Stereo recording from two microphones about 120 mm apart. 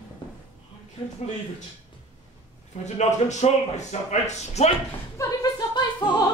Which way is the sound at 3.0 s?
70° left (ahead or behind).